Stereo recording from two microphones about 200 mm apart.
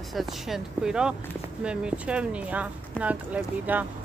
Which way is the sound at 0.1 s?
Centre (ahead or behind).